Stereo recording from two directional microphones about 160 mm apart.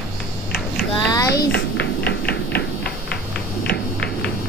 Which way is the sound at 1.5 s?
90° left.